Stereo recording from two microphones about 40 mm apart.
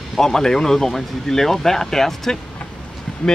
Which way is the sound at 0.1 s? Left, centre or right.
Centre.